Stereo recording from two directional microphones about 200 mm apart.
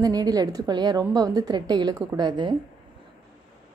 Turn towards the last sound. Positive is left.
turn(degrees=-20)  # may be behind; listen again after turning